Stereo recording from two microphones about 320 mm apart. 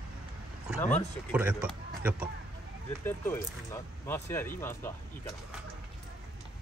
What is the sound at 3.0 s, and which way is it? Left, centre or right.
Speech, centre.